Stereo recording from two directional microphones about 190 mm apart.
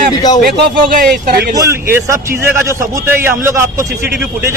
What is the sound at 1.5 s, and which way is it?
A man's voice, 15° right (ahead or behind).